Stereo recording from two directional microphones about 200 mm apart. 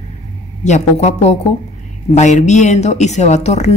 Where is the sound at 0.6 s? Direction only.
35° left (ahead or behind).